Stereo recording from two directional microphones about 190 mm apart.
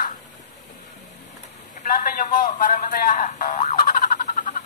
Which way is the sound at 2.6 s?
45° left (ahead or behind).